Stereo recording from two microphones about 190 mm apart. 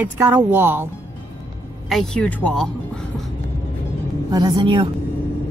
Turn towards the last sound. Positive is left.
turn(degrees=-25)  # may be behind; listen again after turning